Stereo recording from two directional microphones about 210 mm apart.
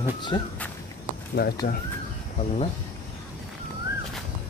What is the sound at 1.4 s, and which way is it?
Speech, 50° left (ahead or behind).